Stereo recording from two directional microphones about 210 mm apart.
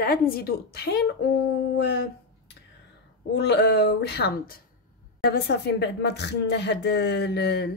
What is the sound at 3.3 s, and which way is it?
Speech, 55° left (ahead or behind).